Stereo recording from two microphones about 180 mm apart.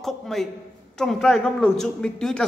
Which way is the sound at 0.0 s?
Centre (ahead or behind).